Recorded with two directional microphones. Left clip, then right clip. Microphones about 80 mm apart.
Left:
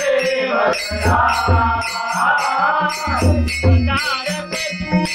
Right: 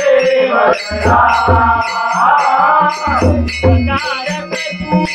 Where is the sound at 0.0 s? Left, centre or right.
Centre.